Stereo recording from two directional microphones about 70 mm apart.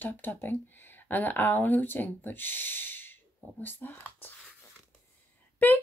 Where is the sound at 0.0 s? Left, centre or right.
Left.